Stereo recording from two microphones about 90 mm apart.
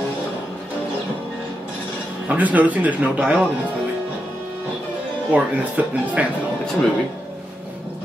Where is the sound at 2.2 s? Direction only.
20° right (ahead or behind).